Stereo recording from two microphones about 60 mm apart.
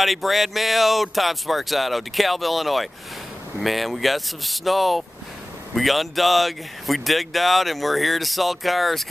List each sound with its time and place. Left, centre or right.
0.0 s speech: centre